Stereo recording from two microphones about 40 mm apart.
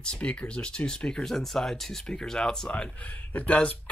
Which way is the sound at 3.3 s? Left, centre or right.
Left.